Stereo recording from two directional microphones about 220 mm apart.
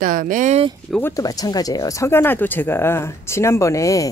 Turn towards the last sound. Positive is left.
turn(degrees=15)  # may be behind; listen again after turning